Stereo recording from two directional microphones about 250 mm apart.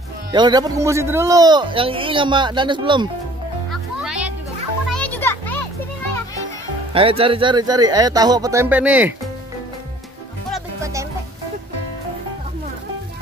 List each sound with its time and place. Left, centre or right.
0.3 s a man's voice: centre
4.0 s music: centre
4.9 s children playing: centre
6.9 s a man's voice: right; by 9.1 s centre
10.8 s music: centre